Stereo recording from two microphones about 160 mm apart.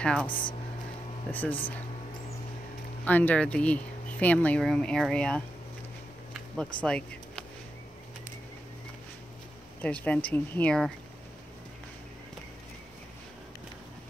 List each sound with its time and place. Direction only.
0.0 s speech: 5° left (ahead or behind)
0.3 s speech: 30° left (ahead or behind)
1.3 s speech: 10° left (ahead or behind)
3.1 s speech: 10° left (ahead or behind)
6.3 s a sound: 5° left (ahead or behind)
9.8 s speech: 10° left (ahead or behind)